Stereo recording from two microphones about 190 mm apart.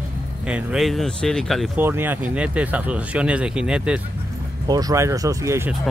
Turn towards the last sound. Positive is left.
turn(degrees=-15)  # may be behind; listen again after turning